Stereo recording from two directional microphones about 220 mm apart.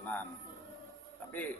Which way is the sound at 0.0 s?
5° left (ahead or behind).